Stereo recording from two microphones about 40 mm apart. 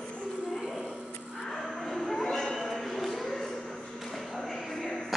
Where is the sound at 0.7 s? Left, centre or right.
Centre.